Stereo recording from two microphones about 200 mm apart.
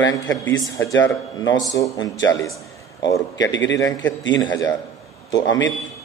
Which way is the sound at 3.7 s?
15° left (ahead or behind).